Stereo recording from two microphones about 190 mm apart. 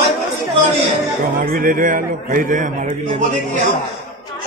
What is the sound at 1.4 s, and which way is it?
A man's voice, 50° right (ahead or behind).